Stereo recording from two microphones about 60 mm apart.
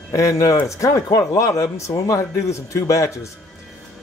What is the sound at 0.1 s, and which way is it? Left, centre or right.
Speech, left.